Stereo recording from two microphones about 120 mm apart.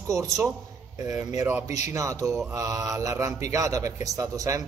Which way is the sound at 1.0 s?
30° right (ahead or behind).